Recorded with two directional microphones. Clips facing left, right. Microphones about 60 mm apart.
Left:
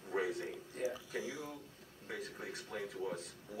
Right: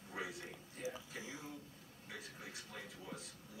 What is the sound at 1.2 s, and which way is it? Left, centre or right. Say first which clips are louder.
Speech: left 7 dB; right.